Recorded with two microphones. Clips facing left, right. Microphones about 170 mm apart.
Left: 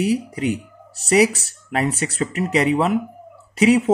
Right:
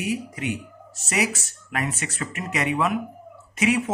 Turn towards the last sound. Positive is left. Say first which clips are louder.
# left 7 dB
turn(degrees=35)  # may be behind; listen again after turning